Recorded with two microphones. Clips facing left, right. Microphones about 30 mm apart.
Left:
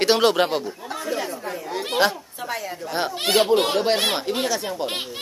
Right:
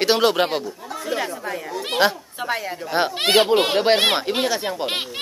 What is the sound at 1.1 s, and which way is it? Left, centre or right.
Speech, right.